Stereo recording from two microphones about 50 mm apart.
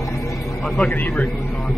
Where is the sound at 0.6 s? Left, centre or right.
Centre.